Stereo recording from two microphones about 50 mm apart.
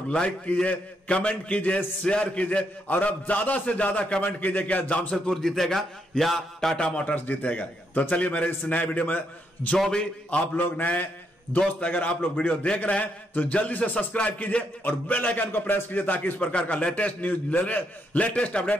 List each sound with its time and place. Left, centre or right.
0.7 s a man's voice: left
4.3 s a man's voice: left
5.1 s a man's voice: centre
6.8 s a man's voice: centre
7.2 s a man's voice: left
9.8 s a man's voice: centre
10.3 s a man's voice: left
15.4 s a man's voice: left